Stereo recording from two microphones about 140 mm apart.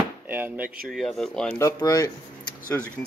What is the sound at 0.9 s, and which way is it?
Speech, centre (ahead or behind).